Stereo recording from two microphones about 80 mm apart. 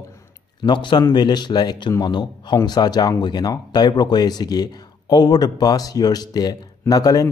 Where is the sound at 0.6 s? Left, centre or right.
Left.